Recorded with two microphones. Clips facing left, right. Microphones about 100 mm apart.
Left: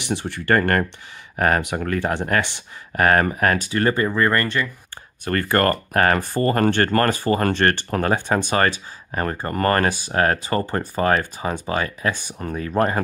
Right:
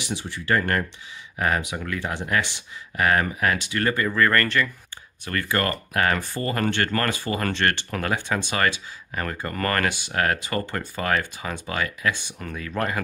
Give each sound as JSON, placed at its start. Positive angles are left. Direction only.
{"t": 0.0, "sound": "speech", "side_deg": 55}
{"t": 3.7, "sound": "speech", "side_deg": 30}
{"t": 5.2, "sound": "speech", "side_deg": 45}